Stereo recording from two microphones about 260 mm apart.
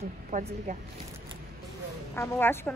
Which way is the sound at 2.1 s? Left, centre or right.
Centre.